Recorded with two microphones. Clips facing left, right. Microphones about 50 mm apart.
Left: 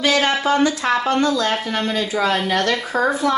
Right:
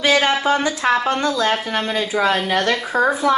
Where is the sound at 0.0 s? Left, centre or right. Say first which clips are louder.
Right 1 dB; centre.